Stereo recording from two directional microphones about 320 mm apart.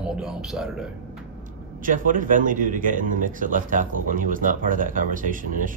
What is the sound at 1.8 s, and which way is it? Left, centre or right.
A man's voice, right.